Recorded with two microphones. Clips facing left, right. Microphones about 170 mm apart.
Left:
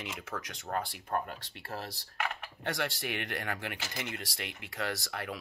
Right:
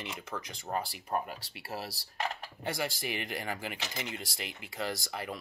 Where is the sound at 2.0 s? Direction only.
35° right (ahead or behind).